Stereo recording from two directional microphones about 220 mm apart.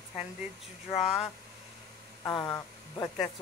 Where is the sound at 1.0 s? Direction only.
Centre (ahead or behind).